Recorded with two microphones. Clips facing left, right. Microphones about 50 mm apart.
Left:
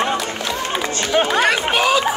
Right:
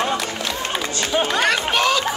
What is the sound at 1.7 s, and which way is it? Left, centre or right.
Chatter, centre.